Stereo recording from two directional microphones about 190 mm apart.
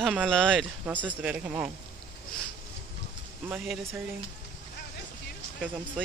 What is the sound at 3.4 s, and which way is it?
Speech, 5° right (ahead or behind).